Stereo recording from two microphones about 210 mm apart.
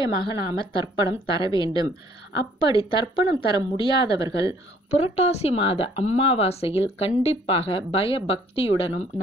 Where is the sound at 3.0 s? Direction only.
15° right (ahead or behind).